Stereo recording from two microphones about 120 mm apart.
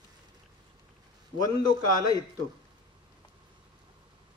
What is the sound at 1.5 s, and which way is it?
Speech, 35° left (ahead or behind).